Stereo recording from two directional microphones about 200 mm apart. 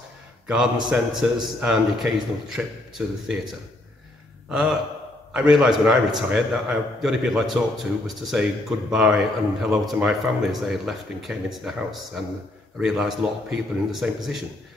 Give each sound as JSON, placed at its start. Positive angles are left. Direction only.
{"t": 0.5, "sound": "a man's voice", "side_deg": -5}
{"t": 4.5, "sound": "a man's voice", "side_deg": -5}